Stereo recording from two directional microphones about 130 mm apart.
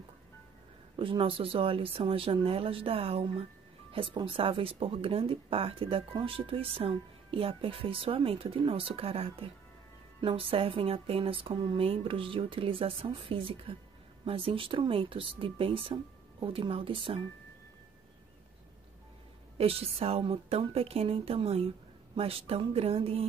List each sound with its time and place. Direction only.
0.9 s speech: 45° right (ahead or behind)
19.6 s speech: 50° right (ahead or behind)